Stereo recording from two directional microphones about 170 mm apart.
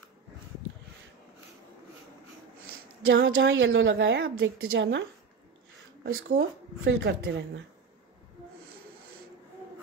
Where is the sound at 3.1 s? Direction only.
90° right.